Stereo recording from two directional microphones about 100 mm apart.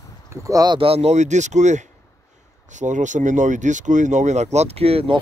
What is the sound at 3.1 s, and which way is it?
Speech, 90° right.